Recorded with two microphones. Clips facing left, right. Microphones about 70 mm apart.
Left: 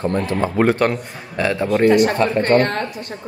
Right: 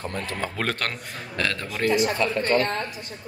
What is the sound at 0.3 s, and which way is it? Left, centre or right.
Speech, centre.